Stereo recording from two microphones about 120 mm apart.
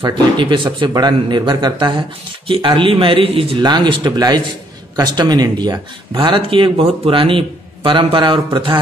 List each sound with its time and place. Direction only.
0.4 s speech: 40° right (ahead or behind)
3.6 s speech: 40° right (ahead or behind)
6.1 s speech: 45° right (ahead or behind)